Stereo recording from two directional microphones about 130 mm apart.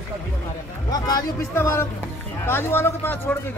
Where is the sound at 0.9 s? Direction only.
30° left (ahead or behind).